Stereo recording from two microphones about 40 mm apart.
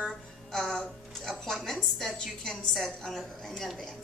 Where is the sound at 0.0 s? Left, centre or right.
Centre.